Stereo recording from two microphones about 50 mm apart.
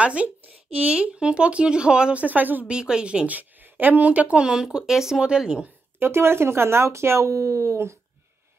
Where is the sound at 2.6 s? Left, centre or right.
Centre.